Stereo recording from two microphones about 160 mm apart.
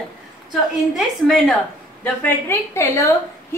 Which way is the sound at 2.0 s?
15° left (ahead or behind).